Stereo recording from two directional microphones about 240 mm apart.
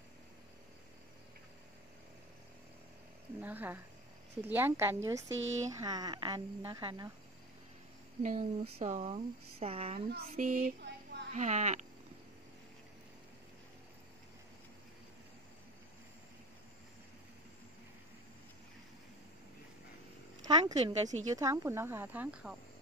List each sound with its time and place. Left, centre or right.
3.3 s a woman's voice: centre
8.2 s speech: right
10.1 s music: right
11.3 s speech: right
20.6 s speech: right
21.4 s a woman's voice: centre